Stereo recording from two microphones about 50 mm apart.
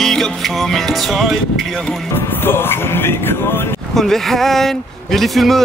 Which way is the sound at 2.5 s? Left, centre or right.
Left.